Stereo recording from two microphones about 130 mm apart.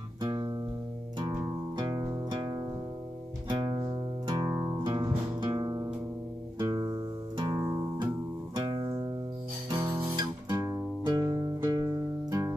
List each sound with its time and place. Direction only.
1.8 s music: 30° right (ahead or behind)
4.3 s music: 30° right (ahead or behind)
9.7 s guitar: 25° right (ahead or behind)
12.3 s music: 25° right (ahead or behind)